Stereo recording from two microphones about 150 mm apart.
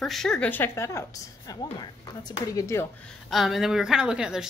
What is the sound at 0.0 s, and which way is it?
A woman's voice, centre (ahead or behind).